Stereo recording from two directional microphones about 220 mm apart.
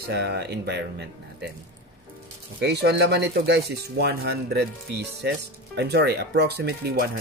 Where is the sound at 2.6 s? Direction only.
50° right (ahead or behind).